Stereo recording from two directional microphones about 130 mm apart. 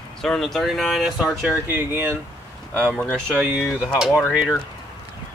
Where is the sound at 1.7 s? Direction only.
15° right (ahead or behind).